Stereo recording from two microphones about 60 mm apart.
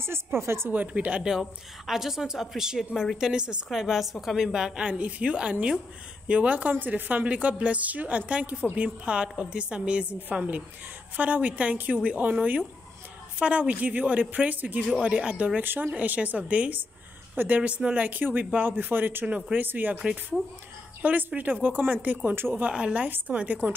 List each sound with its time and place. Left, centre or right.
0.0 s a woman's voice: right
0.7 s a woman's voice: right
1.4 s a woman's voice: centre; by 15.6 s right
15.6 s a woman's voice: right
19.2 s a woman's voice: right
21.0 s a woman's voice: right
22.6 s a woman's voice: centre
23.0 s a woman's voice: right